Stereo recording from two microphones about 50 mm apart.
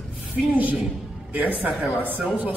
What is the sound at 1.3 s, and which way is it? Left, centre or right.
Speech, right.